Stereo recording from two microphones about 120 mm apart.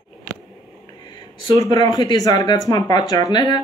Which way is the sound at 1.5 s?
35° left (ahead or behind).